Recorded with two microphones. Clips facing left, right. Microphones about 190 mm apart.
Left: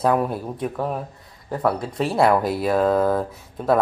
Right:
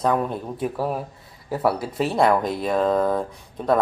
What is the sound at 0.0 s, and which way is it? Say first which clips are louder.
Speech: left 2 dB; 5° left (ahead or behind).